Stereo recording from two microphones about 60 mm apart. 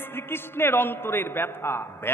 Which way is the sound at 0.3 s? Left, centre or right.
Left.